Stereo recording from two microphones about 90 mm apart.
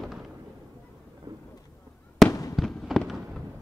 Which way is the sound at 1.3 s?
45° right (ahead or behind).